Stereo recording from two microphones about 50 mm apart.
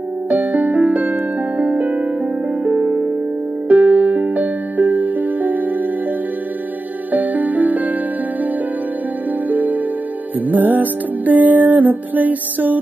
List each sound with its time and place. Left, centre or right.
0.3 s music: right
7.1 s music: right
9.5 s music: right